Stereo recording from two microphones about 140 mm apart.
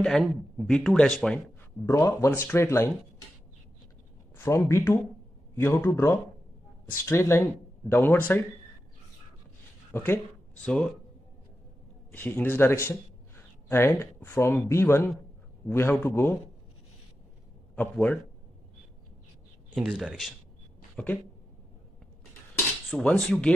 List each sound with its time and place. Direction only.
0.0 s speech: centre (ahead or behind)
1.9 s speech: 20° left (ahead or behind)
4.4 s speech: 20° left (ahead or behind)
9.9 s speech: 15° left (ahead or behind)
12.1 s speech: 15° left (ahead or behind)
17.7 s speech: 10° left (ahead or behind)
19.7 s speech: 5° right (ahead or behind)
20.9 s a sound: 10° left (ahead or behind)
22.8 s speech: centre (ahead or behind)